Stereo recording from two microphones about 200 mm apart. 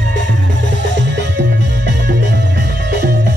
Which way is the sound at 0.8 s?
60° right (ahead or behind).